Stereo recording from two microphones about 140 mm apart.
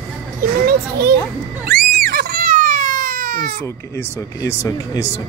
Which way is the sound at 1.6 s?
90° right.